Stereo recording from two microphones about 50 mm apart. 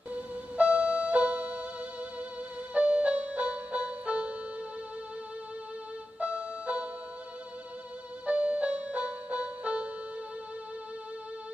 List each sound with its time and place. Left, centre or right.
0.1 s music: right
2.7 s music: right
6.1 s music: right
8.3 s music: right